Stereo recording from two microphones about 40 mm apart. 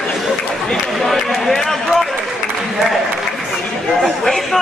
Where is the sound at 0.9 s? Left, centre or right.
Centre.